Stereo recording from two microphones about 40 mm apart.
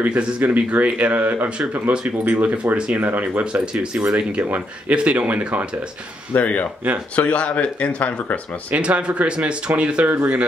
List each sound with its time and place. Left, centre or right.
0.0 s speech: right
3.0 s speech: right
3.8 s speech: right
6.3 s speech: left
7.2 s speech: left
8.7 s speech: right
10.0 s speech: right